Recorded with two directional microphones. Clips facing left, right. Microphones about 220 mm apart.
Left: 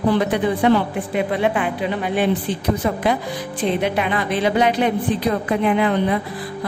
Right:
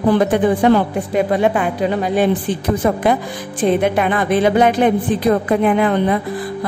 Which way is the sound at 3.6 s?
50° right (ahead or behind).